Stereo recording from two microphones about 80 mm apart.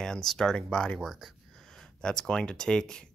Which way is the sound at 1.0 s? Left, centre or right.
Centre.